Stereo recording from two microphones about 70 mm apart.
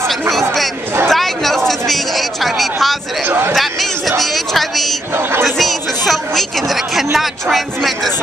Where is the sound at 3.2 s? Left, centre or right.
Right.